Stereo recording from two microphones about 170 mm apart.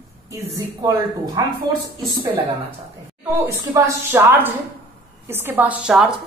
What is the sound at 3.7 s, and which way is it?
A woman's voice, 10° right (ahead or behind).